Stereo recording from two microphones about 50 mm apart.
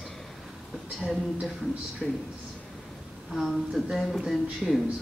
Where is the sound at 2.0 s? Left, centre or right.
Left.